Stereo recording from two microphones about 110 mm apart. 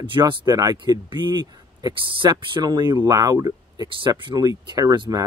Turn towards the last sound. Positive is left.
turn(degrees=-45)  # may be behind; listen again after turning